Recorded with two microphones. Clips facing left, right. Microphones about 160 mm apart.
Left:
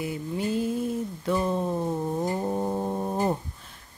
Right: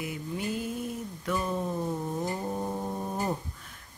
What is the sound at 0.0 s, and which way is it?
Mantra, 30° left (ahead or behind).